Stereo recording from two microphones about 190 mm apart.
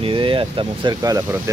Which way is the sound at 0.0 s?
25° right (ahead or behind).